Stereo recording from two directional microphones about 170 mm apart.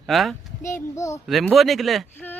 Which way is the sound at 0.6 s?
15° left (ahead or behind).